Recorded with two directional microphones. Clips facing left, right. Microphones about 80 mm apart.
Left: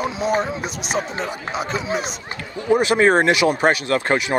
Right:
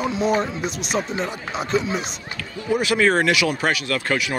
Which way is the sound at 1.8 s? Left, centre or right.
Left.